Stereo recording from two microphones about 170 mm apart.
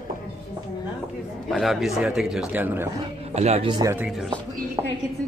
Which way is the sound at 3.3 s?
40° right (ahead or behind).